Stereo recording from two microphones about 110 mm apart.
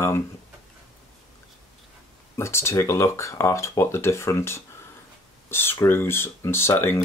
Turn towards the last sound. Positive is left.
turn(degrees=20)  # may be behind; listen again after turning